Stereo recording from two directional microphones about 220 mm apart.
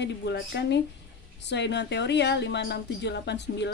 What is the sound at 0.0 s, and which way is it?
Speech, 50° left (ahead or behind).